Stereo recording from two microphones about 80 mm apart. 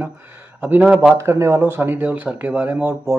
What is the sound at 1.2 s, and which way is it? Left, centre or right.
Speech, right.